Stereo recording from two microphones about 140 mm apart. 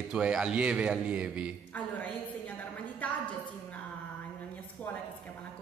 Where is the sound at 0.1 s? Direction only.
5° right (ahead or behind).